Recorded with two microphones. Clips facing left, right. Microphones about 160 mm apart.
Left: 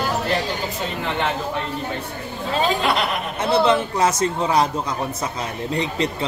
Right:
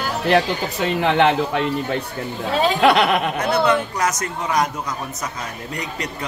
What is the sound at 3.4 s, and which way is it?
A man's voice, 25° left (ahead or behind).